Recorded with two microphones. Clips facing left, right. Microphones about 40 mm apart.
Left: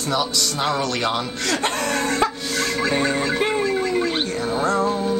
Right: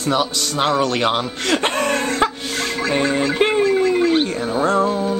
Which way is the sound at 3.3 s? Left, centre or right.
Right.